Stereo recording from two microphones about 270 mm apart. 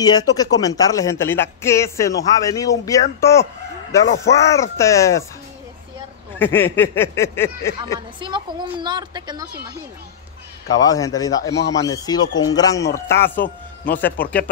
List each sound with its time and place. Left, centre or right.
0.0 s speech: centre
4.0 s speech: left
4.3 s speech: centre
6.3 s speech: centre
8.2 s a woman's voice: centre
10.7 s speech: centre